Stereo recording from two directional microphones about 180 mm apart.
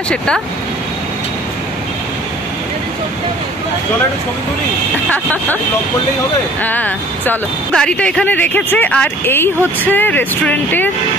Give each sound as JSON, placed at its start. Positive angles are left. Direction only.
{"t": 5.1, "sound": "speech", "side_deg": 10}
{"t": 6.6, "sound": "speech", "side_deg": 10}